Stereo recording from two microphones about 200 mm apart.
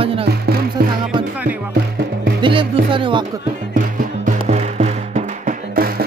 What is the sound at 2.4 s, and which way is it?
Music, 25° right (ahead or behind).